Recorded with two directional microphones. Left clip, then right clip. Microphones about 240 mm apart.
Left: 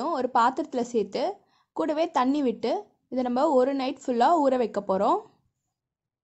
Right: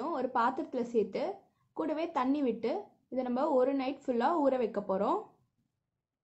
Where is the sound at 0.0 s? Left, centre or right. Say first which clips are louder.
Left 8 dB; left.